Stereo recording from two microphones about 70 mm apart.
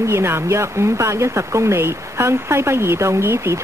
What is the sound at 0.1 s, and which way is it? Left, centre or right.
Speech, right.